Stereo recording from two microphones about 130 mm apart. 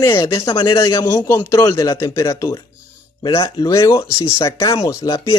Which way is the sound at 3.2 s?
40° left (ahead or behind).